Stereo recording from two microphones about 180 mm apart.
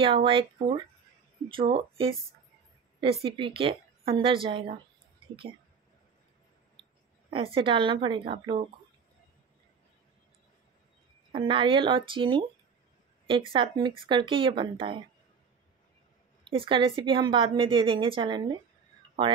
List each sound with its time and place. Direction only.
0.0 s a woman's voice: 30° right (ahead or behind)
7.2 s a woman's voice: 30° right (ahead or behind)
11.3 s a woman's voice: 30° right (ahead or behind)
16.4 s a woman's voice: 30° right (ahead or behind)